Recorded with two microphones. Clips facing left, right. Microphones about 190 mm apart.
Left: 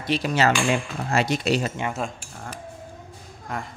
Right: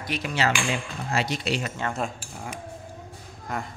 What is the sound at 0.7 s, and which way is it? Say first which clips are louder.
Speech: left 5 dB; 50° left (ahead or behind).